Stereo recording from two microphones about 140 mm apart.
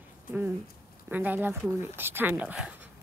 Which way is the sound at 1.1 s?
15° right (ahead or behind).